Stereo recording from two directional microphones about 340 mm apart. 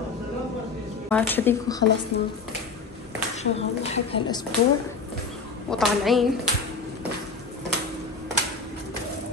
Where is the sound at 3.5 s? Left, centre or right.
Centre.